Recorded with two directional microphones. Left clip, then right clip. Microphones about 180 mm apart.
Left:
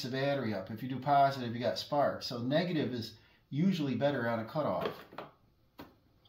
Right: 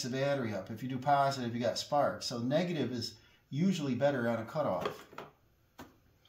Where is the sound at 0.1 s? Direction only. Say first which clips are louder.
Even; 30° right (ahead or behind).